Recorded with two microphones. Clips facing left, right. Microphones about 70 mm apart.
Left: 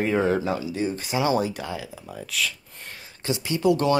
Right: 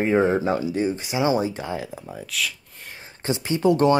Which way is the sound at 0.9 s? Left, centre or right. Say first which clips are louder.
Even; centre.